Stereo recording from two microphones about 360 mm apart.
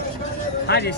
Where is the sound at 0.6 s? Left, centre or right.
Left.